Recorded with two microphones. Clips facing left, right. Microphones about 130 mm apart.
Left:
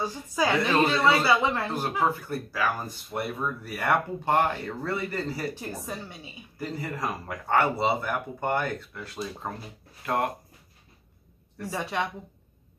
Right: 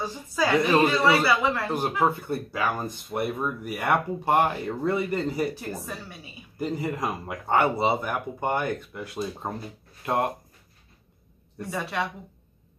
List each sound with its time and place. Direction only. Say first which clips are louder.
0.0 s speech: even; 15° left (ahead or behind)
0.6 s speech: right 4 dB; 15° right (ahead or behind)
1.2 s speech: even; 20° left (ahead or behind)
1.7 s speech: right 2 dB; 20° right (ahead or behind)
5.9 s speech: left 1 dB; 20° left (ahead or behind)
6.6 s speech: right 4 dB; 20° right (ahead or behind)
11.7 s speech: even; 15° left (ahead or behind)